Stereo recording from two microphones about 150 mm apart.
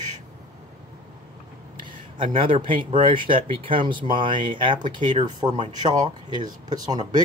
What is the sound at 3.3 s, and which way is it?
Speech, 35° right (ahead or behind).